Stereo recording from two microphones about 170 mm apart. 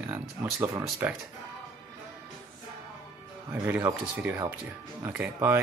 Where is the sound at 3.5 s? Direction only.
15° right (ahead or behind).